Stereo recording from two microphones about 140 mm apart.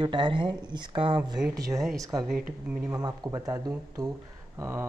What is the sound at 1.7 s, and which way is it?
Speech, centre (ahead or behind).